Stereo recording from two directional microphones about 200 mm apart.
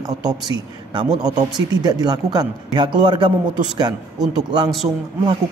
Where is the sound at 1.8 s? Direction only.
20° right (ahead or behind).